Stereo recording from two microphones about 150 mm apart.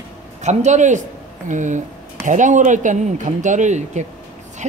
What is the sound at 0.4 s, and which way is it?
Speech, 50° right (ahead or behind).